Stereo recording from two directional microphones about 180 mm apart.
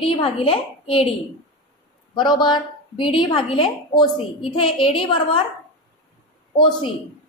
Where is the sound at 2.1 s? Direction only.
25° left (ahead or behind).